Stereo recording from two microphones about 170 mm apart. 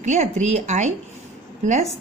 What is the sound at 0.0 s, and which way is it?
A woman's voice, 45° right (ahead or behind).